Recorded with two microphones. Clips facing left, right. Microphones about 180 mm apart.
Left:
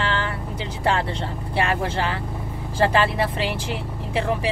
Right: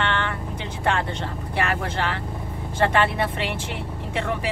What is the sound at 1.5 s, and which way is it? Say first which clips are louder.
Speech: left 3 dB; 30° left (ahead or behind).